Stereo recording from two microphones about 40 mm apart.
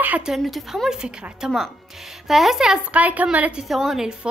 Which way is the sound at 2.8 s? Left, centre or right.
Right.